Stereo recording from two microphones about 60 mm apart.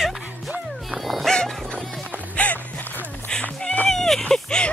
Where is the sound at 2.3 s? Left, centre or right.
Left.